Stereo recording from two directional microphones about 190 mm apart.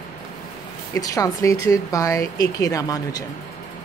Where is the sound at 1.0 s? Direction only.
15° left (ahead or behind).